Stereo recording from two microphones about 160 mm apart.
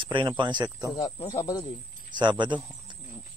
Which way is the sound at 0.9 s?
25° left (ahead or behind).